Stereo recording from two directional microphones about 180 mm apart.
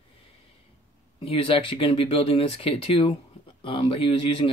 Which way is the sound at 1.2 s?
30° left (ahead or behind).